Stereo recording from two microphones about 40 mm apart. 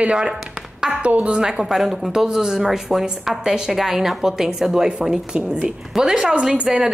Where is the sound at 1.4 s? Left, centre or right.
Centre.